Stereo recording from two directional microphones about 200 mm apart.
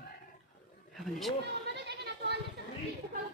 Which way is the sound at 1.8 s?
55° right (ahead or behind).